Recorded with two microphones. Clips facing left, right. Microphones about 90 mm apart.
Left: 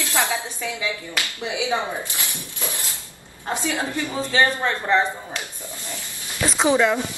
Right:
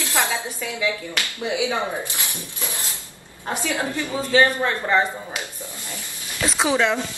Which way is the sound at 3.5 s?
20° left (ahead or behind).